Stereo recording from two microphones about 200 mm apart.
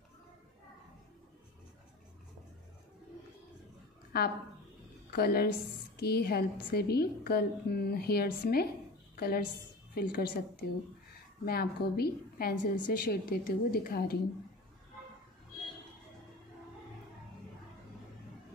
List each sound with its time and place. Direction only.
4.1 s a woman's voice: 50° left (ahead or behind)